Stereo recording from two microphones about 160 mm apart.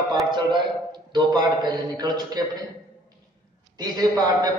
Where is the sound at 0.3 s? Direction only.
30° right (ahead or behind).